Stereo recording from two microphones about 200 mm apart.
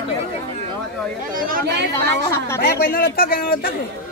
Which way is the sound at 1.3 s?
45° right (ahead or behind).